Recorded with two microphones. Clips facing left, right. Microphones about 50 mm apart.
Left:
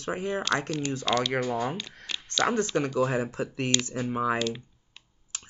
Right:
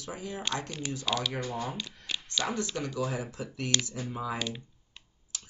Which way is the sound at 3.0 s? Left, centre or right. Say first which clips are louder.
Left 7 dB; left.